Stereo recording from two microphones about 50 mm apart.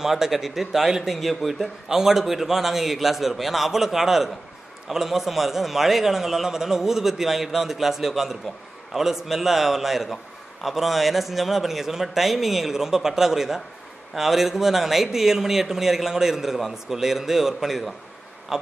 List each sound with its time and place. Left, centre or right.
0.0 s a man's voice: centre